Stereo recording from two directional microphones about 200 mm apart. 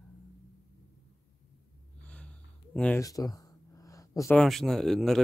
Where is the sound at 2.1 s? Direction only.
5° left (ahead or behind).